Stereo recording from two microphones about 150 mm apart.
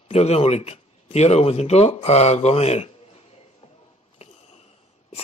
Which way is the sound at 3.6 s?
45° left (ahead or behind).